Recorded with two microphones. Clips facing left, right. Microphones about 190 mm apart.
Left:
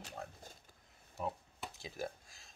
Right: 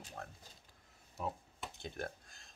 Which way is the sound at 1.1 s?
Centre (ahead or behind).